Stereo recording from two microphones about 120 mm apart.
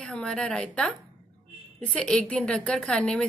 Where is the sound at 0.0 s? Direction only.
5° left (ahead or behind).